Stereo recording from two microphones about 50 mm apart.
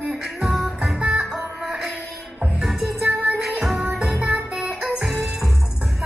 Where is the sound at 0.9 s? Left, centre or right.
Centre.